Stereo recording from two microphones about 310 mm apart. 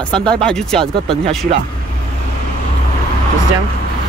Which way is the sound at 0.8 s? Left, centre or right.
Centre.